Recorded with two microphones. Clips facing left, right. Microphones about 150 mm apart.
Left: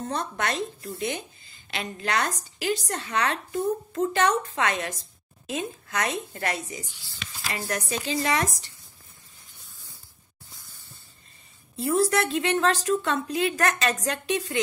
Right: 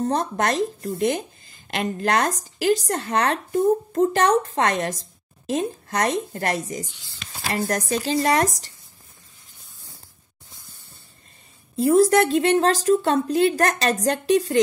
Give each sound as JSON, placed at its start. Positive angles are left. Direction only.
{"t": 0.0, "sound": "a woman's voice", "side_deg": -40}
{"t": 8.0, "sound": "a woman's voice", "side_deg": -40}
{"t": 11.7, "sound": "a woman's voice", "side_deg": -40}